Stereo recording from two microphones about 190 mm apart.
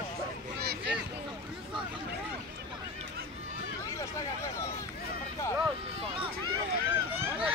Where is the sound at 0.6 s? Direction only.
55° right (ahead or behind).